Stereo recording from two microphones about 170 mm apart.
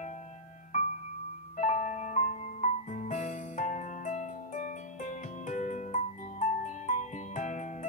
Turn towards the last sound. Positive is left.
turn(degrees=45)  # may be behind; listen again after turning